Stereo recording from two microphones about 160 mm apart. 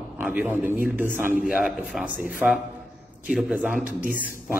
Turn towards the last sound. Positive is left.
turn(degrees=-10)  # may be behind; listen again after turning